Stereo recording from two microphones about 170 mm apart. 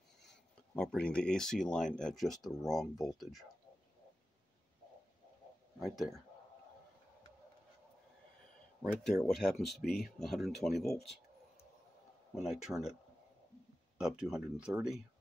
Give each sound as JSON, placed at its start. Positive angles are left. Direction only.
{"t": 0.2, "sound": "speech", "side_deg": 5}
{"t": 5.8, "sound": "speech", "side_deg": 0}
{"t": 9.0, "sound": "speech", "side_deg": 0}
{"t": 12.4, "sound": "speech", "side_deg": 0}
{"t": 13.9, "sound": "speech", "side_deg": -5}